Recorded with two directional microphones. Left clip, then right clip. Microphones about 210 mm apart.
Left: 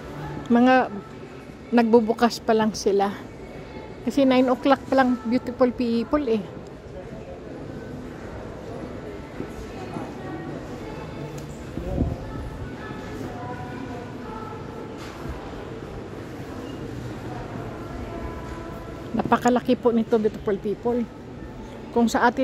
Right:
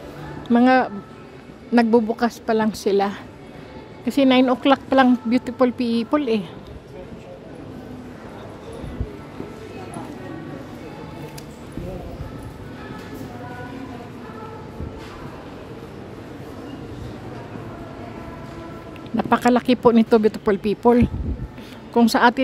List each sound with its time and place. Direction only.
0.5 s a woman's voice: 10° right (ahead or behind)
19.1 s speech: 10° right (ahead or behind)
19.9 s speech: 20° right (ahead or behind)
21.9 s a woman's voice: 10° right (ahead or behind)